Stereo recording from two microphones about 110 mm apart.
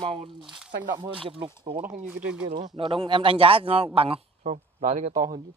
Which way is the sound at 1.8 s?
15° right (ahead or behind).